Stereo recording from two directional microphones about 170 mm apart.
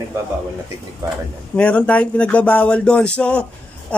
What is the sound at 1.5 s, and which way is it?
Speech, 5° left (ahead or behind).